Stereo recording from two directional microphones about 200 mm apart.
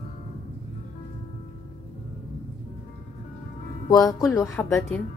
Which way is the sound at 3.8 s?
20° left (ahead or behind).